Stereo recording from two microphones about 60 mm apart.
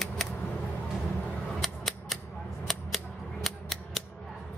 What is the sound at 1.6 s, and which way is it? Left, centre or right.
Cap gun, centre.